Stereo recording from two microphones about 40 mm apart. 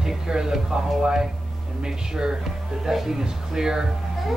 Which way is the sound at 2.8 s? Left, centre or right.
Centre.